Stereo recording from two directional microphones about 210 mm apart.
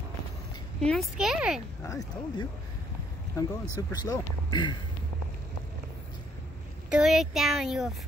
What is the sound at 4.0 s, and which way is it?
Speech, 20° left (ahead or behind).